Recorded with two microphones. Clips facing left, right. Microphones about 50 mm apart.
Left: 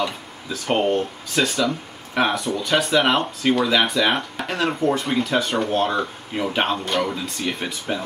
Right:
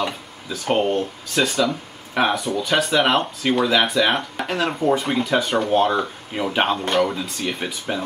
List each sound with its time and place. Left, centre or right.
0.0 s speech: centre